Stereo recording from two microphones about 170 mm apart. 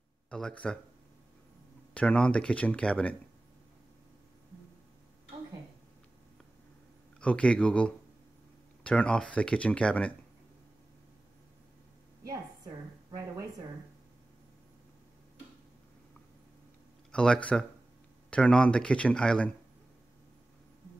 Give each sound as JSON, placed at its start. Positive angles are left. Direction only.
{"t": 0.3, "sound": "speech", "side_deg": 5}
{"t": 2.0, "sound": "speech", "side_deg": 5}
{"t": 7.2, "sound": "speech", "side_deg": 5}
{"t": 12.3, "sound": "a sound", "side_deg": -20}
{"t": 17.1, "sound": "speech", "side_deg": 5}